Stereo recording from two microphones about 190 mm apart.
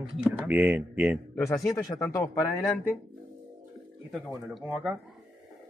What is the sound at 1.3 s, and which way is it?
Speech, 15° left (ahead or behind).